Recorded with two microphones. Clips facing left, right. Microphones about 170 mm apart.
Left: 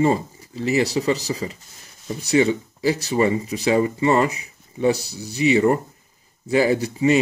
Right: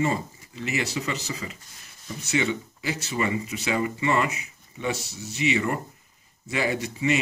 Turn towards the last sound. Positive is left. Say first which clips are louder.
# left 7 dB
turn(degrees=35)  # may be behind; listen again after turning